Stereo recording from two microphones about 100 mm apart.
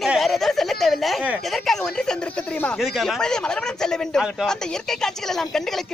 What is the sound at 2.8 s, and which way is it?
A man's voice, centre (ahead or behind).